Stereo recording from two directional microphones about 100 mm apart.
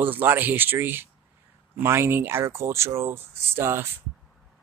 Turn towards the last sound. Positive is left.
turn(degrees=-25)  # may be behind; listen again after turning